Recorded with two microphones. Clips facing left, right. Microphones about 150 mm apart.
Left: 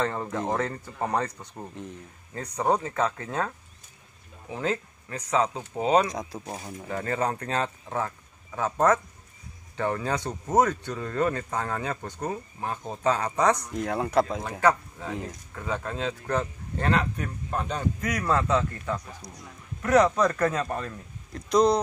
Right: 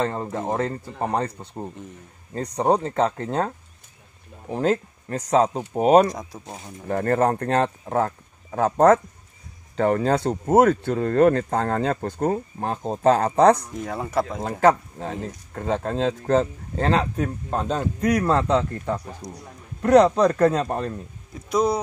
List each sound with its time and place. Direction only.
0.0 s speech: 25° right (ahead or behind)
4.5 s speech: 40° right (ahead or behind)
6.0 s speech: centre (ahead or behind)
6.9 s speech: 55° right (ahead or behind)
9.8 s speech: 70° right (ahead or behind)
10.4 s speech: 60° right (ahead or behind)
12.7 s speech: 35° right (ahead or behind)
13.0 s speech: 65° right (ahead or behind)
13.7 s speech: centre (ahead or behind)
14.6 s speech: 45° right (ahead or behind)
16.3 s speech: 90° right
17.2 s speech: 35° right (ahead or behind)
19.4 s a man's voice: 30° right (ahead or behind)
21.3 s speech: 5° right (ahead or behind)